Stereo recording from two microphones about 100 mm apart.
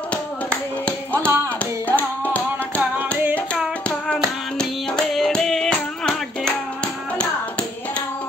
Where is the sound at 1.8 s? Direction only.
15° left (ahead or behind).